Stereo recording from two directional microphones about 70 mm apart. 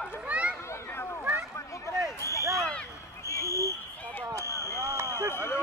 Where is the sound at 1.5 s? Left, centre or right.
Left.